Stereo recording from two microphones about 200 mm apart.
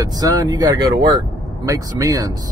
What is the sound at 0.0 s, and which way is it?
Speech, 20° right (ahead or behind).